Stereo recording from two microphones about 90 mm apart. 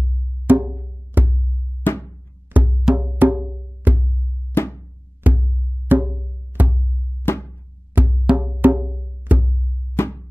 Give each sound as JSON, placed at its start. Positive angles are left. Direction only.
{"t": 0.5, "sound": "percussion", "side_deg": -20}
{"t": 1.1, "sound": "music", "side_deg": -25}
{"t": 1.8, "sound": "music", "side_deg": 25}
{"t": 2.5, "sound": "wood block", "side_deg": -20}
{"t": 3.0, "sound": "music", "side_deg": -25}
{"t": 4.6, "sound": "music", "side_deg": 25}
{"t": 5.2, "sound": "wood block", "side_deg": -20}
{"t": 6.5, "sound": "music", "side_deg": -20}
{"t": 7.2, "sound": "music", "side_deg": 25}
{"t": 7.9, "sound": "music", "side_deg": -20}
{"t": 10.0, "sound": "music", "side_deg": 25}